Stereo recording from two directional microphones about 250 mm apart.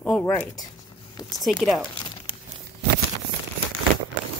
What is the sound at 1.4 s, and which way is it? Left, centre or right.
Speech, centre.